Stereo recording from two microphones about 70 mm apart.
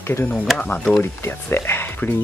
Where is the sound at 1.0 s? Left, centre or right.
Left.